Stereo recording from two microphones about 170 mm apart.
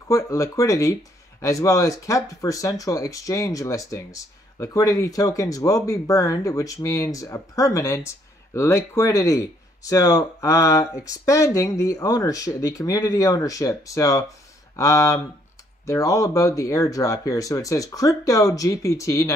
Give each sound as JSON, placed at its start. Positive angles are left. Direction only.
{"t": 0.1, "sound": "speech", "side_deg": 20}